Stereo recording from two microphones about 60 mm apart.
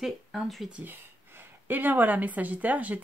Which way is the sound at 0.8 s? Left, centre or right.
Right.